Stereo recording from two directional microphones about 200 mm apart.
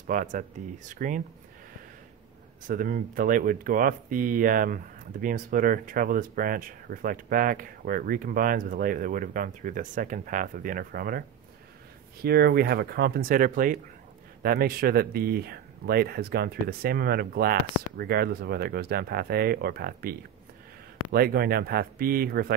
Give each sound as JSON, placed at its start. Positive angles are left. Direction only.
{"t": 0.0, "sound": "speech", "side_deg": -40}
{"t": 2.6, "sound": "speech", "side_deg": -45}